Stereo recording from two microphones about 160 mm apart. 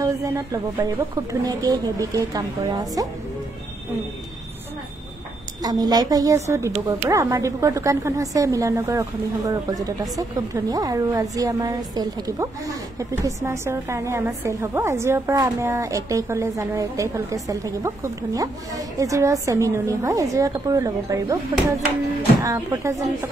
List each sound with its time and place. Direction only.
0.0 s a woman's voice: 20° right (ahead or behind)
5.6 s a woman's voice: 25° right (ahead or behind)